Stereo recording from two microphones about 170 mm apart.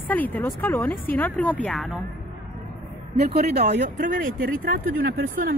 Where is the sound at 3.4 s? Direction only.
45° right (ahead or behind).